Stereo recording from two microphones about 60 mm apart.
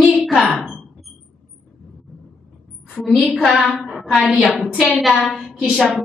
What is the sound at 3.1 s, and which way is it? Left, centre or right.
A woman's voice, centre.